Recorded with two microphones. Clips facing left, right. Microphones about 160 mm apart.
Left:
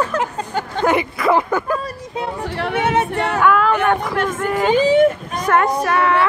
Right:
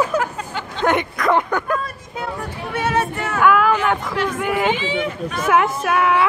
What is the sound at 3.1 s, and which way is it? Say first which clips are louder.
Female singing: left 5 dB; 70° left (ahead or behind).